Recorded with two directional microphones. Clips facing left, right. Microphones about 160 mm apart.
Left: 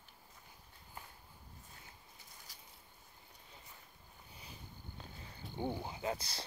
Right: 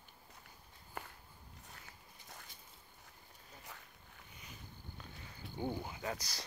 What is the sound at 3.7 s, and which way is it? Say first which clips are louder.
Zipper: right 4 dB; 90° right.